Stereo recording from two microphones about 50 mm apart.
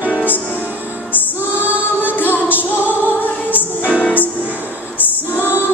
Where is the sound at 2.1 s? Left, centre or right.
Left.